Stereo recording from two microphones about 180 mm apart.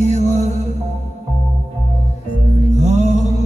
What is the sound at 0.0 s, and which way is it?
Music, 40° right (ahead or behind).